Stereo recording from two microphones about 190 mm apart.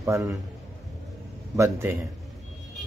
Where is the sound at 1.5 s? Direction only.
15° right (ahead or behind).